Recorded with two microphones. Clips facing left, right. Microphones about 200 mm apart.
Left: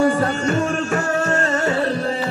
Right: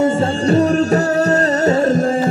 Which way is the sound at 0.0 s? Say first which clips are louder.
Right 2 dB; 25° right (ahead or behind).